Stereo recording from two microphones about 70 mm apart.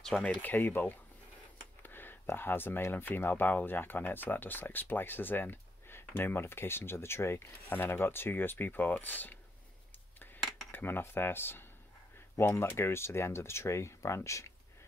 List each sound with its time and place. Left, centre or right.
0.2 s speech: left
10.1 s cutlery: left
10.7 s speech: left